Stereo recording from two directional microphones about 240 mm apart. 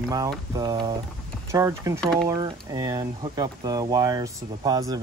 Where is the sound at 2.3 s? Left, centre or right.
Centre.